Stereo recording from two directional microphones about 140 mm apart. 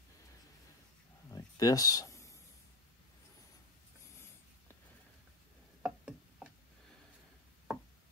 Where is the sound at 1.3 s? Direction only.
25° left (ahead or behind).